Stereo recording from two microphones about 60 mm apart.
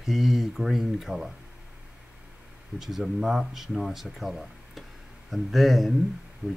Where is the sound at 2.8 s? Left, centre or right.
Centre.